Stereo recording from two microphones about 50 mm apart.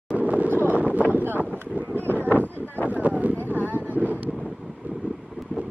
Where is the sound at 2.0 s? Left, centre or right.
Left.